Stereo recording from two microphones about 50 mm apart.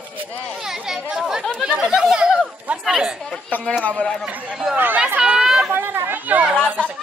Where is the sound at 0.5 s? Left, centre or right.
Centre.